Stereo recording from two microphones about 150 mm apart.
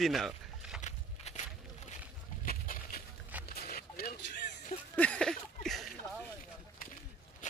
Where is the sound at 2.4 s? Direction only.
70° left (ahead or behind).